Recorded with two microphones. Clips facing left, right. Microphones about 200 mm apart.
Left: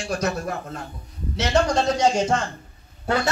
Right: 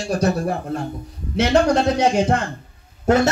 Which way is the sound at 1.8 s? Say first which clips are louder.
Right 3 dB; 60° right (ahead or behind).